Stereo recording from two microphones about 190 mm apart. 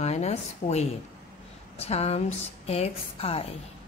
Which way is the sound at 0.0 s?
35° left (ahead or behind).